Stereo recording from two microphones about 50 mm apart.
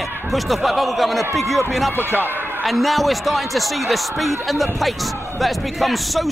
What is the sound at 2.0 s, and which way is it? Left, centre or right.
Speech, right.